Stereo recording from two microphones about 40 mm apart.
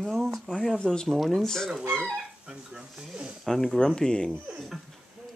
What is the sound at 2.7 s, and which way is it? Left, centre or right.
Speech, right.